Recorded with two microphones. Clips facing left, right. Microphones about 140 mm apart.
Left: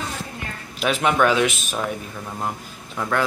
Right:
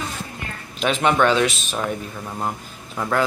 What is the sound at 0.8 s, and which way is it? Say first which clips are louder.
Speech: right 1 dB; 5° left (ahead or behind).